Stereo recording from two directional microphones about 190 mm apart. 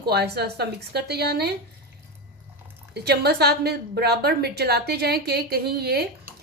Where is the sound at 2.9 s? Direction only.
60° right (ahead or behind).